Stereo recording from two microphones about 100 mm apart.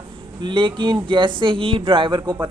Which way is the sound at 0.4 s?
55° right (ahead or behind).